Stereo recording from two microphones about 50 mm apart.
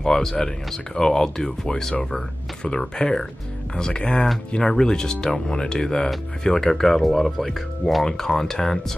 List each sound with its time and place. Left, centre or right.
0.0 s speech: centre